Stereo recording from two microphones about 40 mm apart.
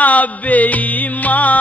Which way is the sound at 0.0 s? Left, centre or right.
Left.